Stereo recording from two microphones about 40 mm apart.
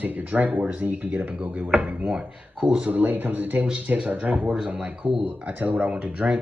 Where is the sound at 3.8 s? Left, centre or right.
Right.